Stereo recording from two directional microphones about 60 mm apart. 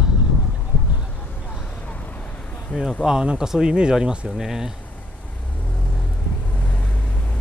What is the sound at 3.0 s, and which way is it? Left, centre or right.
Speech, centre.